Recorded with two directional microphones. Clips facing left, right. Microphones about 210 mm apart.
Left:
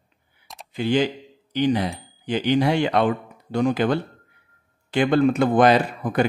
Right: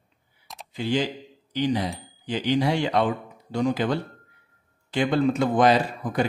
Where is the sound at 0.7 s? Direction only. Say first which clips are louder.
Left 4 dB; 60° left (ahead or behind).